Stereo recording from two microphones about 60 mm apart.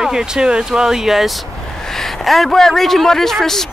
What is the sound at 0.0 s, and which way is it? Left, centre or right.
A man's voice, centre.